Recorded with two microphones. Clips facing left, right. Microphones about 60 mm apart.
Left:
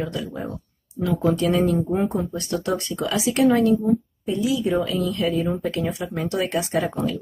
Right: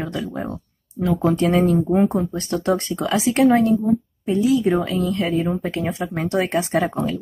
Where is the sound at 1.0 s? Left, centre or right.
Right.